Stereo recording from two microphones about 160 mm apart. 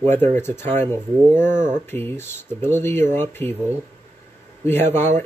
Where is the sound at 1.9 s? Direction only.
15° left (ahead or behind).